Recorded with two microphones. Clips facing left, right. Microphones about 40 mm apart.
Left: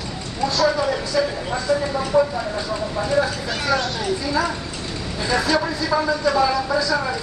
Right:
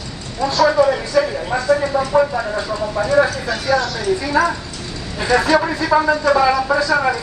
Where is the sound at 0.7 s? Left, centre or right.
Centre.